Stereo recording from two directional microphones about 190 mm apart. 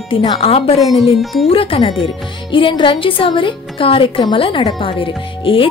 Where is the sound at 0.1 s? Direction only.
30° left (ahead or behind).